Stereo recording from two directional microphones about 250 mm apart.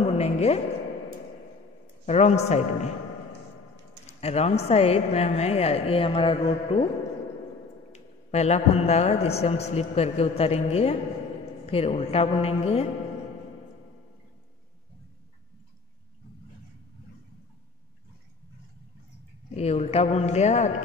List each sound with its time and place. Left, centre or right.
0.0 s a sound: left
2.0 s a woman's voice: left
4.0 s a woman's voice: left
7.9 s a man's voice: left
19.5 s a woman's voice: left